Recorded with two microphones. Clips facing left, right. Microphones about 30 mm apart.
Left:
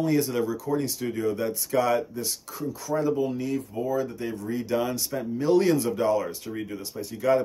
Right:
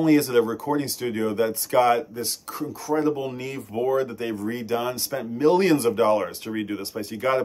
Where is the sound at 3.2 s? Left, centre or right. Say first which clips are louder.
Left 3 dB; right.